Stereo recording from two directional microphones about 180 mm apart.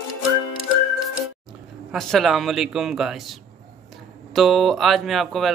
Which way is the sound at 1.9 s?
Centre (ahead or behind).